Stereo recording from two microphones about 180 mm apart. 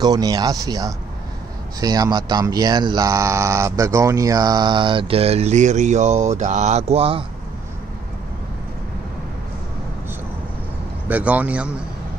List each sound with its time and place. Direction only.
0.0 s speech: 20° right (ahead or behind)
11.1 s a man's voice: 10° right (ahead or behind)